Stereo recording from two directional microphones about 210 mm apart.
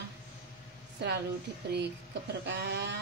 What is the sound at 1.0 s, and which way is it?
Speech, 50° right (ahead or behind).